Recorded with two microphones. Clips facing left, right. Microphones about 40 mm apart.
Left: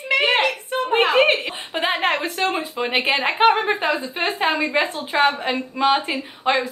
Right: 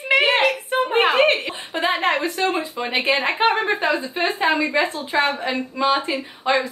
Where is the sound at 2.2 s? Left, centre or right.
Left.